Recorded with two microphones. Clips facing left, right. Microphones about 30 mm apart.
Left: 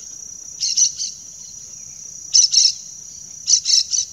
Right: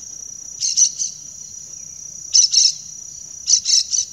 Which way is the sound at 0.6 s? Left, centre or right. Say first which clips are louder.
Right 1 dB; centre.